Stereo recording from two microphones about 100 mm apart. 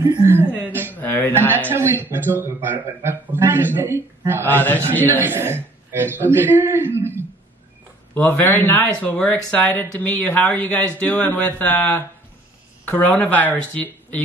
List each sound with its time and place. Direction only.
0.2 s speech: 25° right (ahead or behind)
0.5 s a woman's voice: 20° left (ahead or behind)
1.7 s speech: 20° right (ahead or behind)
4.6 s speech: 15° left (ahead or behind)
5.0 s speech: 20° right (ahead or behind)
8.1 s speech: 20° left (ahead or behind)